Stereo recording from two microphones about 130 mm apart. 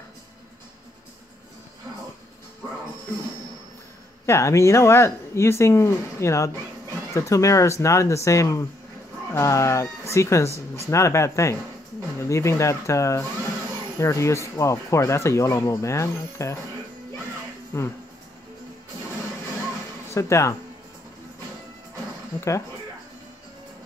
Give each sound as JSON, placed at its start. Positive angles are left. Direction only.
{"t": 4.3, "sound": "speech", "side_deg": 20}
{"t": 17.7, "sound": "speech", "side_deg": 20}
{"t": 20.2, "sound": "speech", "side_deg": 25}